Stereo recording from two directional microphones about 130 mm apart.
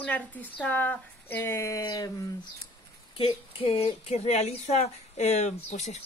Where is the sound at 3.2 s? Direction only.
45° left (ahead or behind).